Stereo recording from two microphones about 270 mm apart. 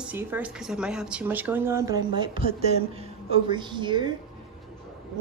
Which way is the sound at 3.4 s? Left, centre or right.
Centre.